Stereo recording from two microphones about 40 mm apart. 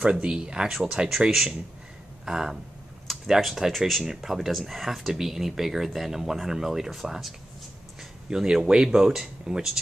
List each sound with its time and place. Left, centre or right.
0.0 s speech: right
2.2 s speech: centre
8.3 s speech: centre